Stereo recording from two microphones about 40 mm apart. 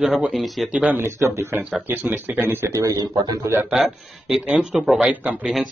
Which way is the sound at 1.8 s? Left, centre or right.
Right.